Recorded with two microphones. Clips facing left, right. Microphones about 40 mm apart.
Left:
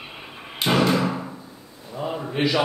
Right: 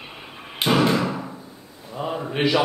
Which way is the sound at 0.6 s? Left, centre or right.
Centre.